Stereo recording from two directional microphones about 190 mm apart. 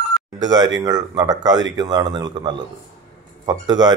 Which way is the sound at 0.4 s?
20° right (ahead or behind).